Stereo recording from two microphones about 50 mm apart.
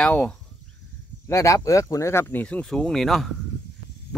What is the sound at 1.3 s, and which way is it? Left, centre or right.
Speech, left.